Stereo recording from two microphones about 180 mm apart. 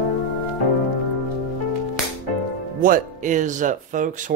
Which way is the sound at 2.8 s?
45° right (ahead or behind).